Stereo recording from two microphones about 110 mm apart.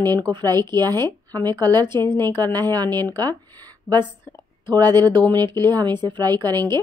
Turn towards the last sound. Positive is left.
turn(degrees=-40)  # may be behind; listen again after turning